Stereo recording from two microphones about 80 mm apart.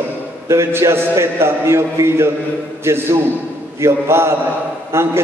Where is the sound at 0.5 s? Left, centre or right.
Right.